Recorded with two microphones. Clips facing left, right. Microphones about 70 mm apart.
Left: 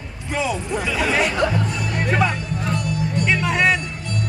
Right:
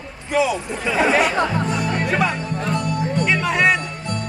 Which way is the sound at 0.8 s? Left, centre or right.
Right.